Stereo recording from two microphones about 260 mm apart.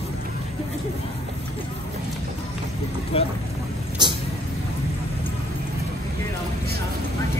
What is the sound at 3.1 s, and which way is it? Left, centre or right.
Speech, left.